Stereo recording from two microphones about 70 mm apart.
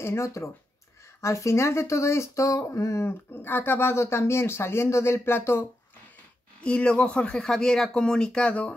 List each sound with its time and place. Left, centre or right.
0.0 s speech: left
6.6 s speech: centre